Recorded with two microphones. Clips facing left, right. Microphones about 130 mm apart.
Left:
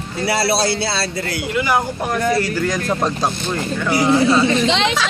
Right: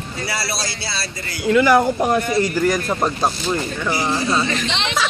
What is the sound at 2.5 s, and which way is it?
Speech, 10° right (ahead or behind).